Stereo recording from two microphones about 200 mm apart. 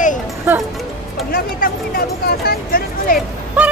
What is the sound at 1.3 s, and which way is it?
Speech, 45° left (ahead or behind).